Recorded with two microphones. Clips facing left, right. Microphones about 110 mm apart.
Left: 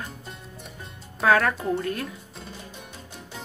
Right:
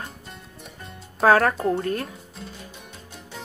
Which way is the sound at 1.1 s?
35° right (ahead or behind).